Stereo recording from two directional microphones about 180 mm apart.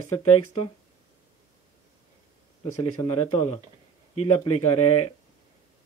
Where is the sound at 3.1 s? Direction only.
35° left (ahead or behind).